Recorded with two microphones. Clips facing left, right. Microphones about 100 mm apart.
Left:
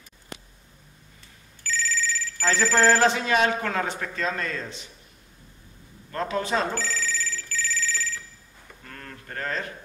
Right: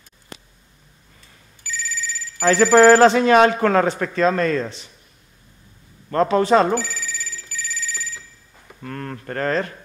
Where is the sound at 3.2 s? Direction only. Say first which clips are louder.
Right 9 dB; 55° right (ahead or behind).